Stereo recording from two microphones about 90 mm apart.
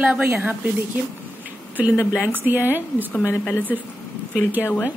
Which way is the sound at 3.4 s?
20° left (ahead or behind).